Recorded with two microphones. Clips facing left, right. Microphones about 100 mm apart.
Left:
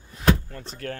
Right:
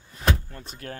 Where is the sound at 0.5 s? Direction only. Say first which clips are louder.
Left 4 dB; 15° right (ahead or behind).